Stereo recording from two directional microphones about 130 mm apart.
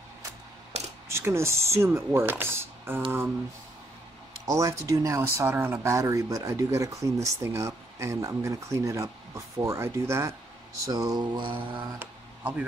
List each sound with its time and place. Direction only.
1.0 s speech: 20° right (ahead or behind)
4.5 s speech: 25° right (ahead or behind)
10.9 s mantra: 25° right (ahead or behind)